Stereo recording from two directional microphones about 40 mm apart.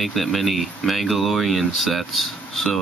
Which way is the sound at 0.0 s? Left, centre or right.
Centre.